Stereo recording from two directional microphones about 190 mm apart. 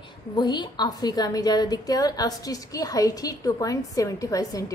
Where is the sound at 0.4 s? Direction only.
20° left (ahead or behind).